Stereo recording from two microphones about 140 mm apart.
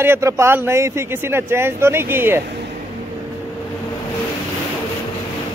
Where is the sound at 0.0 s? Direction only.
20° right (ahead or behind).